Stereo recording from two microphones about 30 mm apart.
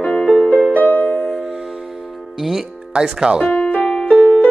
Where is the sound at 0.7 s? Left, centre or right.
Left.